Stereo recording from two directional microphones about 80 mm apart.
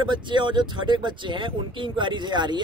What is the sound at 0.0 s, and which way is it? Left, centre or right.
Speech, right.